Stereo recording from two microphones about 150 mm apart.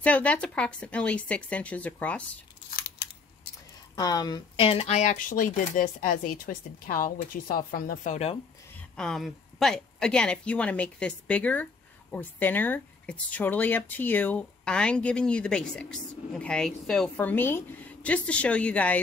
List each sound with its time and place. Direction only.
0.0 s speech: 10° left (ahead or behind)
3.0 s typing: 90° left
3.9 s speech: 25° left (ahead or behind); by 8.3 s 55° left (ahead or behind)
8.9 s speech: 5° left (ahead or behind)